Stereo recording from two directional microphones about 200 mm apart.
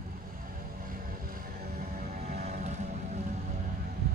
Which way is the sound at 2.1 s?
35° right (ahead or behind).